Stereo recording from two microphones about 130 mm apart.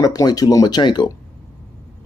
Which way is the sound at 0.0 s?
30° left (ahead or behind).